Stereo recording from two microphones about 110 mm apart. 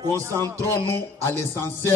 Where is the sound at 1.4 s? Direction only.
20° left (ahead or behind).